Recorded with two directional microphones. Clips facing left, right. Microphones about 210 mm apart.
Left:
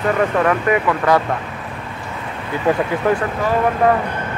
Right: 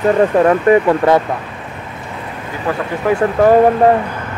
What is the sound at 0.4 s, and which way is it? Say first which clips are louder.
Speech: right 6 dB; 30° right (ahead or behind).